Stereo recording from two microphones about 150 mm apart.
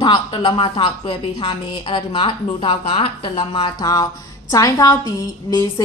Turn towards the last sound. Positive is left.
turn(degrees=25)  # may be behind; listen again after turning